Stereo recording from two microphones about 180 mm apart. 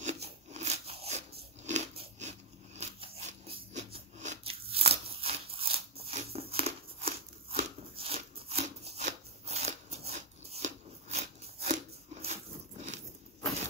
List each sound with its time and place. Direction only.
0.0 s crunch: 40° right (ahead or behind)
1.6 s biting: 40° right (ahead or behind)
5.1 s a sound: 30° right (ahead or behind)